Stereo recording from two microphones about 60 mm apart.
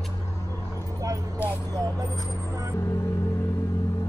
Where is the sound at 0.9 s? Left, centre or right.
Right.